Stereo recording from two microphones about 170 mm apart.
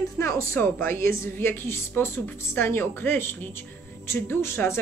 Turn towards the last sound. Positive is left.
turn(degrees=15)  # may be behind; listen again after turning